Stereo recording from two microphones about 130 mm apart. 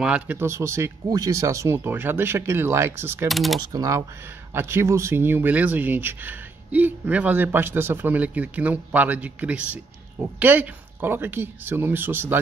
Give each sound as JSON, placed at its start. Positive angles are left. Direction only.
{"t": 0.0, "sound": "speech", "side_deg": -10}
{"t": 0.4, "sound": "speech", "side_deg": -20}
{"t": 3.3, "sound": "speech", "side_deg": 0}
{"t": 3.7, "sound": "speech", "side_deg": -25}